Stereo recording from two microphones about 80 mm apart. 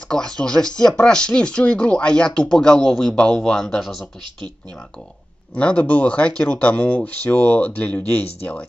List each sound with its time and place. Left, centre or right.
0.1 s speech: centre
5.5 s speech: centre